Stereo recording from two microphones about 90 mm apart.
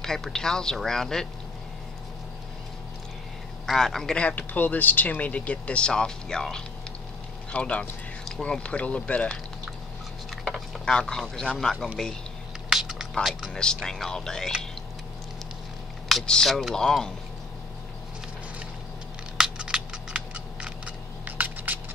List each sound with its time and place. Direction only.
0.0 s speech: 5° left (ahead or behind)
3.6 s speech: 5° left (ahead or behind)
10.4 s speech: 5° left (ahead or behind)
12.6 s a sound: 5° right (ahead or behind)
13.2 s speech: 5° right (ahead or behind)
13.5 s speech: 10° left (ahead or behind)
16.1 s speech: 5° left (ahead or behind)
19.3 s scissors: 10° right (ahead or behind)
21.4 s a sound: 20° right (ahead or behind)